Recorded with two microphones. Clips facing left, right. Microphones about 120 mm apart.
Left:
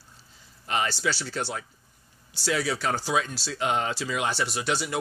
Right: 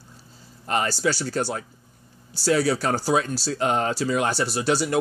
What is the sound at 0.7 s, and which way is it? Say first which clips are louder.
Speech: right 4 dB; 45° right (ahead or behind).